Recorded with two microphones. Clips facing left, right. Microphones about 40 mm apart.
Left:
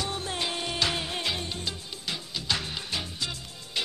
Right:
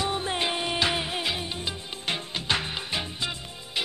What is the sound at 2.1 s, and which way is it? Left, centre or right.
Music, right.